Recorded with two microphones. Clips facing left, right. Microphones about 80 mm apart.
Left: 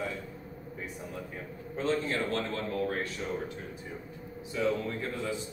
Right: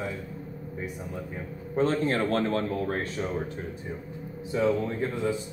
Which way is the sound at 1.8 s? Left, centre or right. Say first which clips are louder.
Right 5 dB; right.